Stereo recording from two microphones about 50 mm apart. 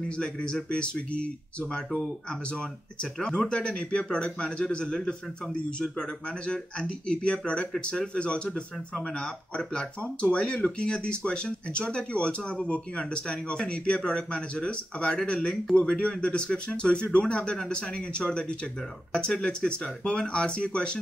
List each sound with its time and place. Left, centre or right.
0.2 s speech: centre